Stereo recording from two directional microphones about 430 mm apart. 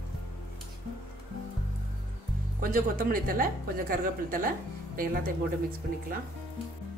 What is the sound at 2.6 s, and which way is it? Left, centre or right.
Speech, centre.